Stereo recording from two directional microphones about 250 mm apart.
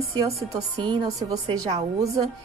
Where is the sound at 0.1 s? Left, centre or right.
Centre.